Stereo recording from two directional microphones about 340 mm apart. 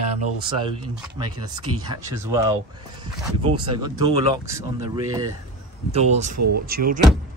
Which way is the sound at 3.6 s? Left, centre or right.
Centre.